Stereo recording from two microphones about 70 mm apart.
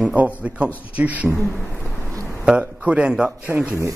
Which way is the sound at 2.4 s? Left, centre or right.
Centre.